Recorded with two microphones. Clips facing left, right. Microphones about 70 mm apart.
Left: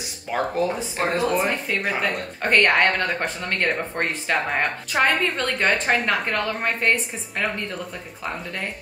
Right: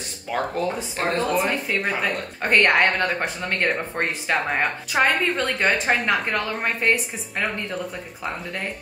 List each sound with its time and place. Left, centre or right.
0.3 s speech: centre